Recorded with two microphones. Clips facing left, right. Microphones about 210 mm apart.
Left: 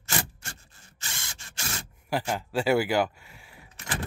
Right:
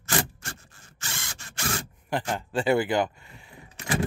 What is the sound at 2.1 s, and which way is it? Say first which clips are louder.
Speech: even; 5° left (ahead or behind).